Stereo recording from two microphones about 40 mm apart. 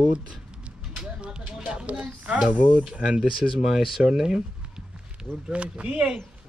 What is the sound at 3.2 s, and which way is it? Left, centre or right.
Speech, centre.